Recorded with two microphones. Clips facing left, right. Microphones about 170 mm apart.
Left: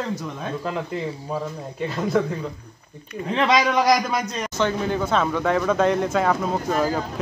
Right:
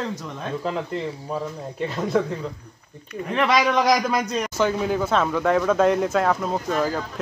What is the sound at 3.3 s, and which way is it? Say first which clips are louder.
Speech: even; 20° left (ahead or behind).